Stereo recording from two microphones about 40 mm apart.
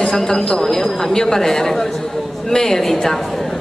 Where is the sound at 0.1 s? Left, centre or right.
Centre.